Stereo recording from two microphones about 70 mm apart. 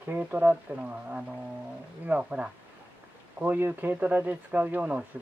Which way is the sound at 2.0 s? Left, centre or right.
Centre.